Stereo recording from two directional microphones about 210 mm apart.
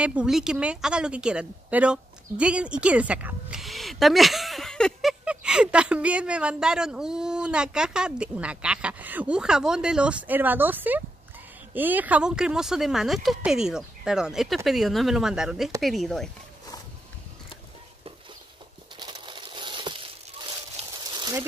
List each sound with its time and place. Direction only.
0.0 s a woman's voice: 5° right (ahead or behind)
18.9 s crumpling: 20° right (ahead or behind)